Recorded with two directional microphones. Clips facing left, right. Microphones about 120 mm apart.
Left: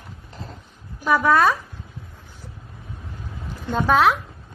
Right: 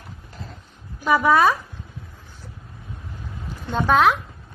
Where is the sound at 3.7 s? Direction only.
Centre (ahead or behind).